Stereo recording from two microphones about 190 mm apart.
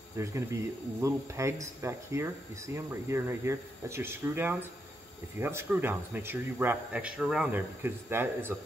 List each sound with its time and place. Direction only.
0.2 s speech: 15° right (ahead or behind)